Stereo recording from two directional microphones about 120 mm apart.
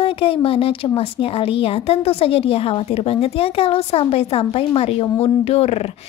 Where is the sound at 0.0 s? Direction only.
50° left (ahead or behind).